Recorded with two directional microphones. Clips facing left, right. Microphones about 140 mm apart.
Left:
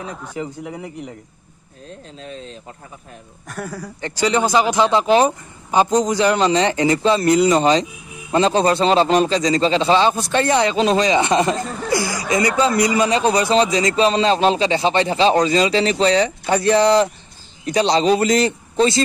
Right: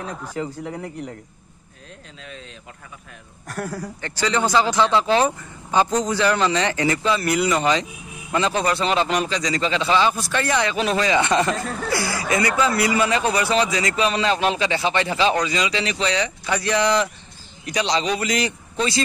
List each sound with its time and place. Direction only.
0.0 s speech: centre (ahead or behind)
2.2 s a man's voice: 30° left (ahead or behind)
3.4 s speech: centre (ahead or behind)
4.0 s speech: 15° left (ahead or behind)
11.6 s speech: centre (ahead or behind)
11.9 s a man's voice: 15° left (ahead or behind); by 19.0 s 30° left (ahead or behind)